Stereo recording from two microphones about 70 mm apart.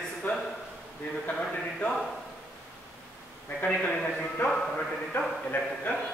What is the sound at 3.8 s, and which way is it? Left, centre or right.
Speech, centre.